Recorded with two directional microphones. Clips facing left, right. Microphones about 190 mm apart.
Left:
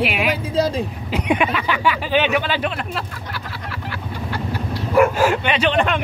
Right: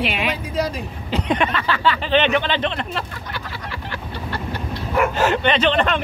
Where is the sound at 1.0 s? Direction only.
10° left (ahead or behind).